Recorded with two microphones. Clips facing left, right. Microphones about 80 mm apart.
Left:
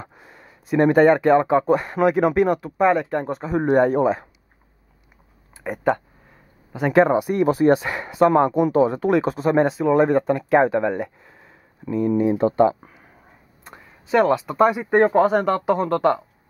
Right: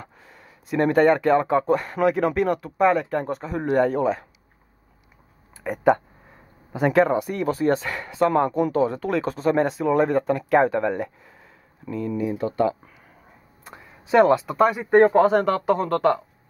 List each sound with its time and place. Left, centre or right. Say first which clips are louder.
0.0 s speech: left 3 dB; centre
3.6 s speech: left 3 dB; centre
5.5 s speech: right 2 dB; centre
7.1 s speech: left 5 dB; centre
12.2 s speech: left 5 dB; left
13.7 s a sound: even; centre
14.3 s speech: left 1 dB; centre